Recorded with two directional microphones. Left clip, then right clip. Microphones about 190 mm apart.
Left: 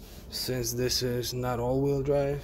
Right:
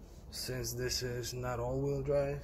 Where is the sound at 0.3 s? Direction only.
35° left (ahead or behind).